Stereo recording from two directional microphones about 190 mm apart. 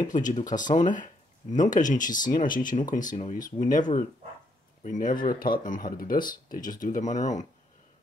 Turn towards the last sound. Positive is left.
turn(degrees=40)  # may be behind; listen again after turning